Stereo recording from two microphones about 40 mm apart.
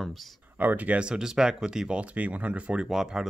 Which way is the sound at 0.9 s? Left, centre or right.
Right.